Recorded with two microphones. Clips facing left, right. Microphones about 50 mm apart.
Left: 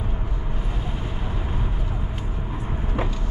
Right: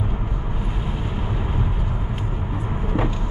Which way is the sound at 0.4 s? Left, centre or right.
Centre.